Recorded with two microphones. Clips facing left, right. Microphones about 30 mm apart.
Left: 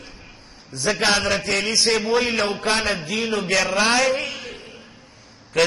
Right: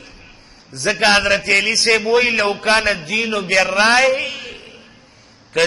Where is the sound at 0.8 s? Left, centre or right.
Right.